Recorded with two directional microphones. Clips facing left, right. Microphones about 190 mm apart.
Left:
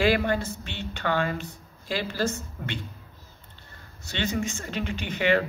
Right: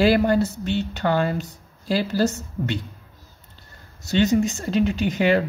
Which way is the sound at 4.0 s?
40° right (ahead or behind).